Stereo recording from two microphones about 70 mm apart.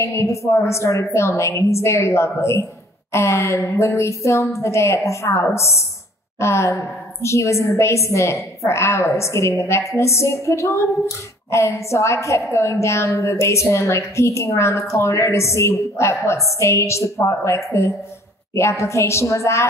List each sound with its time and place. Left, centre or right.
0.0 s a woman's voice: left